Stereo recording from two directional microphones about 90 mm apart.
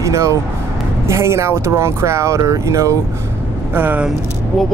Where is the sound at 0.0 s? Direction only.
35° right (ahead or behind).